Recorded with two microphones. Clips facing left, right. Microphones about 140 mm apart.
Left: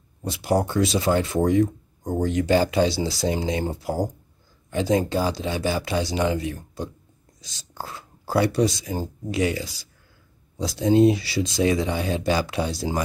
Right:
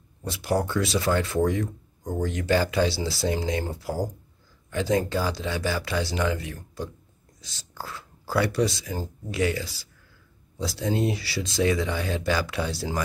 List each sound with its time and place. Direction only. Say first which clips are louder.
0.2 s speech: left 3 dB; 20° left (ahead or behind)